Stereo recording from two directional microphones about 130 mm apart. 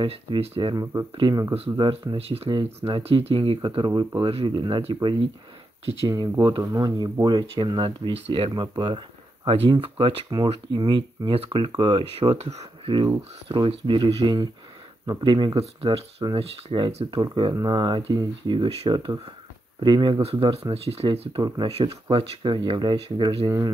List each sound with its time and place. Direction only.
0.0 s speech: 45° right (ahead or behind)
2.1 s speech: 50° right (ahead or behind)
2.5 s speech: 35° right (ahead or behind)
3.0 s speech: 50° right (ahead or behind)
12.9 s speech: 40° right (ahead or behind)
15.6 s speech: 50° right (ahead or behind)
20.2 s speech: 45° right (ahead or behind)
21.4 s speech: 30° right (ahead or behind)
21.6 s speech: 50° right (ahead or behind)
22.1 s speech: 35° right (ahead or behind)